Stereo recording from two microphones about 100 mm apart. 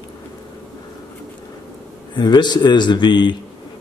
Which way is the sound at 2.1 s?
45° left (ahead or behind).